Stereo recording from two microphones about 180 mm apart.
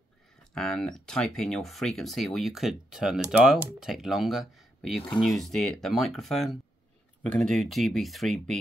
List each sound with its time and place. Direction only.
0.6 s speech: centre (ahead or behind)